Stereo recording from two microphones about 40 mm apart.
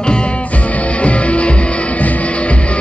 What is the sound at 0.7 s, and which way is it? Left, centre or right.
Music, left.